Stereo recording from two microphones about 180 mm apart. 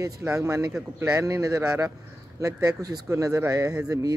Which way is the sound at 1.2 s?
15° right (ahead or behind).